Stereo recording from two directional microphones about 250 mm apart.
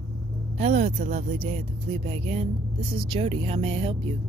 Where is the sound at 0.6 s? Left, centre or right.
Right.